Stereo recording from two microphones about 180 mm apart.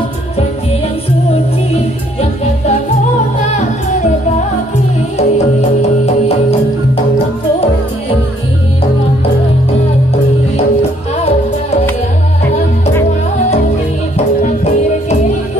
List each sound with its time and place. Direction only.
5.1 s music: 35° left (ahead or behind)
14.1 s music: 40° left (ahead or behind)